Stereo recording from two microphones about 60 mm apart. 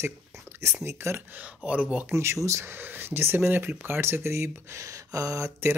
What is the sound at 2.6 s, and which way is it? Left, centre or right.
Speech, right.